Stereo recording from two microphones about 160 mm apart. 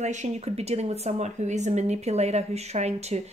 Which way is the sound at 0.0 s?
45° right (ahead or behind).